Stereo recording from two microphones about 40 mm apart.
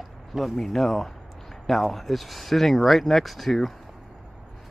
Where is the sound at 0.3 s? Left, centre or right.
Centre.